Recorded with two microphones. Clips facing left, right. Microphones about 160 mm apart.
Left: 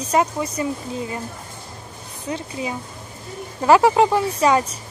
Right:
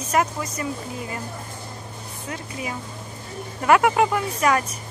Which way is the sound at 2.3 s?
25° left (ahead or behind).